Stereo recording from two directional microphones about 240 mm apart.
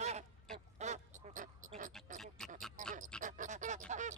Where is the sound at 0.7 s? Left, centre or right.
Right.